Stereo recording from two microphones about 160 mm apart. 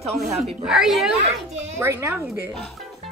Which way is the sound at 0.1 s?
Centre (ahead or behind).